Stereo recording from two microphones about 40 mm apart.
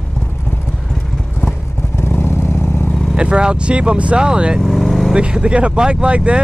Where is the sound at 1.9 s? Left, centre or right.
Left.